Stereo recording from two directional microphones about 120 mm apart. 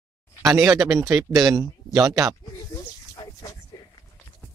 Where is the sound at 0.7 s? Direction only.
25° right (ahead or behind).